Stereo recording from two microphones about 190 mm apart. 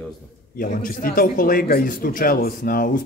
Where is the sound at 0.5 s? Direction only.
45° left (ahead or behind).